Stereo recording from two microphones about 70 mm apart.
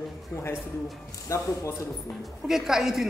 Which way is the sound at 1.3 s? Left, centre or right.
Left.